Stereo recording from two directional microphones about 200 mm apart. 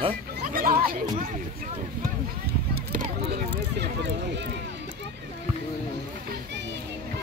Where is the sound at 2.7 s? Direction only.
50° right (ahead or behind).